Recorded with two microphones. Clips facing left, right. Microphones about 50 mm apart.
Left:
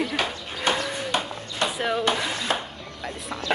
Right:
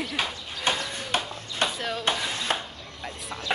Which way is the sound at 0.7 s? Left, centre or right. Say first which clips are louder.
Left 3 dB; left.